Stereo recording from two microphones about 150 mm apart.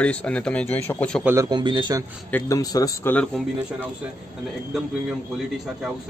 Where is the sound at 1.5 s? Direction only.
30° right (ahead or behind).